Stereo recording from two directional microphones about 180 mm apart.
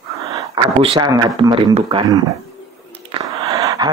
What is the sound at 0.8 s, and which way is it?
Speech, 35° right (ahead or behind).